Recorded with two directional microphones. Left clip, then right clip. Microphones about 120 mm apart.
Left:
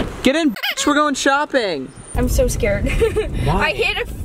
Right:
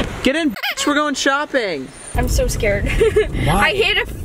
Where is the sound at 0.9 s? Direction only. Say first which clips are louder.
Left 2 dB; 35° left (ahead or behind).